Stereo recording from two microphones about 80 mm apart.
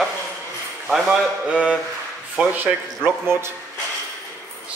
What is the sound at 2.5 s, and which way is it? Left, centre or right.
Speech, right.